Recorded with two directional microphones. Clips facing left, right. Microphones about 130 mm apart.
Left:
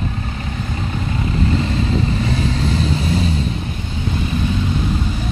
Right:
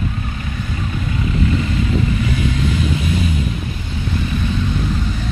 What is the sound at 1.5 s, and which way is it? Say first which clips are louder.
Vehicle: even; 30° left (ahead or behind).